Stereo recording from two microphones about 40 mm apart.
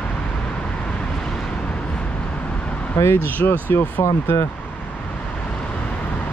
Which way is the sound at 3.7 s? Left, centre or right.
Left.